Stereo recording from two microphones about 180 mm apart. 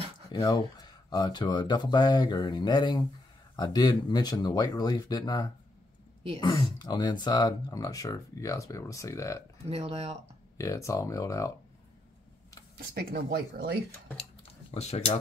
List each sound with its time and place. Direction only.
0.3 s speech: 20° left (ahead or behind)
9.7 s speech: 35° right (ahead or behind)
10.6 s speech: 15° left (ahead or behind)
12.7 s speech: 60° right (ahead or behind)
14.7 s speech: 35° left (ahead or behind)